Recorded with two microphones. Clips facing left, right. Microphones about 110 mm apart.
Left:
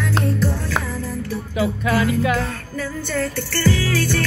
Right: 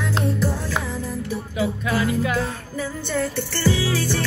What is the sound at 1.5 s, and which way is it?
Music, 75° left (ahead or behind).